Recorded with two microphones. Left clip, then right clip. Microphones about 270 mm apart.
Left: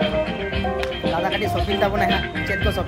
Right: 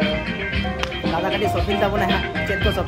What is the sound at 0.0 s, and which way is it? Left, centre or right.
Music, centre.